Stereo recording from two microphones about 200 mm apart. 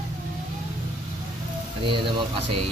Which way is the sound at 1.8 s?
25° right (ahead or behind).